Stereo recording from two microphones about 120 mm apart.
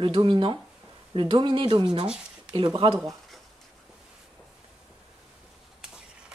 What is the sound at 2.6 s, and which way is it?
Speech, 45° right (ahead or behind).